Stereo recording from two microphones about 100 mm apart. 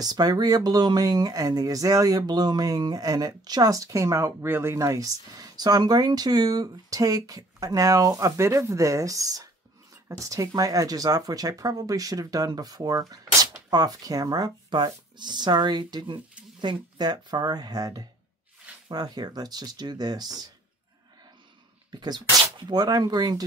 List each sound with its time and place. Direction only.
0.0 s speech: 40° right (ahead or behind)
21.9 s speech: 45° right (ahead or behind)